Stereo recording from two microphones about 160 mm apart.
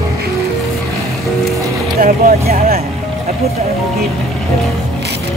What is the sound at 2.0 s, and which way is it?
Speech, 55° right (ahead or behind).